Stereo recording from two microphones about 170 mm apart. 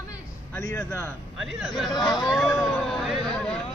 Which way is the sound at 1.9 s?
20° left (ahead or behind).